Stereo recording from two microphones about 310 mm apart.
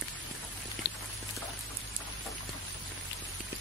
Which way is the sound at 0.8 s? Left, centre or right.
Left.